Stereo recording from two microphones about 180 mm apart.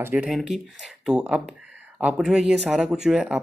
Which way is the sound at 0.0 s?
5° right (ahead or behind).